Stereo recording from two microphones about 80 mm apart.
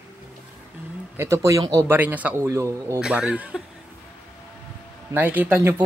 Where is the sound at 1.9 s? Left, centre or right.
Right.